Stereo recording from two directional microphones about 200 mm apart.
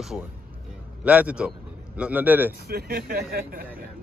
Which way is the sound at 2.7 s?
50° right (ahead or behind).